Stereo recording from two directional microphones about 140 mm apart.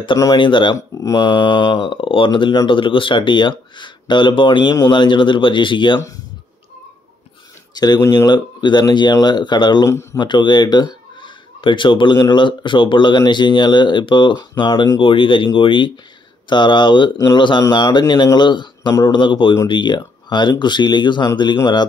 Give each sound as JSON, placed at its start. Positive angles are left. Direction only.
{"t": 0.0, "sound": "speech", "side_deg": 30}
{"t": 0.7, "sound": "speech", "side_deg": 25}
{"t": 1.2, "sound": "speech", "side_deg": 35}
{"t": 7.7, "sound": "speech", "side_deg": 30}